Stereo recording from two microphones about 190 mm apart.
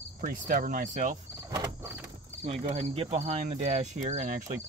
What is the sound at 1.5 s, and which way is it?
Speech, 15° right (ahead or behind).